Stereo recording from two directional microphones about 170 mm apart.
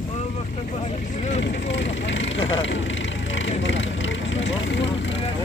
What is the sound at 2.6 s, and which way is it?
Vehicle, 90° left.